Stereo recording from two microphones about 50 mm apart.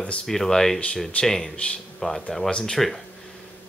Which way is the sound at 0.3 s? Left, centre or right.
Centre.